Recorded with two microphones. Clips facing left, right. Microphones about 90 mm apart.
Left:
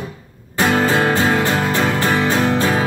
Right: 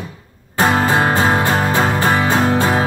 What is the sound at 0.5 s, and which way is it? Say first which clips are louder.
Music: right 1 dB; 40° right (ahead or behind).